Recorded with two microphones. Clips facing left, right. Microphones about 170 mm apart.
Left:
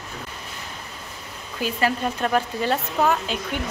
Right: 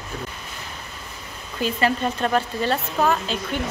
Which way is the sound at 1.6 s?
5° left (ahead or behind).